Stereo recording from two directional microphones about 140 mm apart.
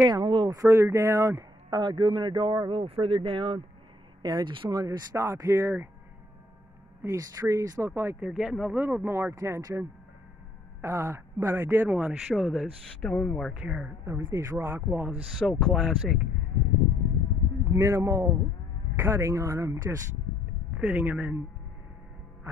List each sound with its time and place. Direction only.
0.0 s speech: 30° right (ahead or behind)
7.0 s speech: 20° right (ahead or behind)
8.3 s speech: 5° right (ahead or behind)
13.5 s speech: 10° right (ahead or behind)
14.3 s speech: 20° right (ahead or behind)
15.3 s speech: centre (ahead or behind)
17.7 s speech: 20° right (ahead or behind)
20.7 s speech: 10° right (ahead or behind)